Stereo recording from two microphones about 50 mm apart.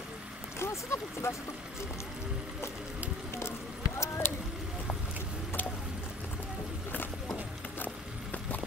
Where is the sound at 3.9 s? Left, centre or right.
Left.